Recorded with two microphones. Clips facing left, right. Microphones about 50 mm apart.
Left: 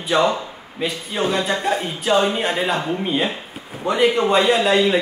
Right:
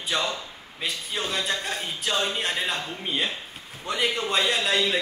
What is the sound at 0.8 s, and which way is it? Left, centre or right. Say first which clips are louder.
A man's voice: left 8 dB; centre.